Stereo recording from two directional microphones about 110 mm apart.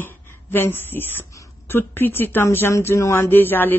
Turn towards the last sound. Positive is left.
turn(degrees=20)  # may be behind; listen again after turning